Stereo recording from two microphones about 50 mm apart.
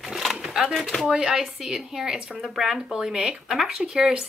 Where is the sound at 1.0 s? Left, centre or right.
Centre.